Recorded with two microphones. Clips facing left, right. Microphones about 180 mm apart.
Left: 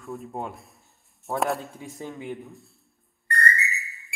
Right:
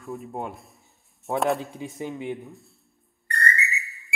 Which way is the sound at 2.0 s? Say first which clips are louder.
Right 3 dB; 20° right (ahead or behind).